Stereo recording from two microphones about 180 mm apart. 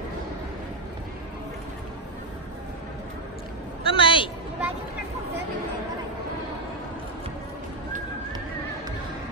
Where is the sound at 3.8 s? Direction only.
30° left (ahead or behind).